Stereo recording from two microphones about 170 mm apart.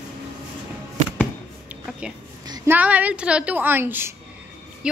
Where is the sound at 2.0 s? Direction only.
5° right (ahead or behind).